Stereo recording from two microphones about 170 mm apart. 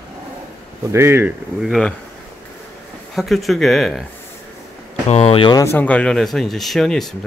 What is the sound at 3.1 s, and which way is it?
Speech, centre (ahead or behind).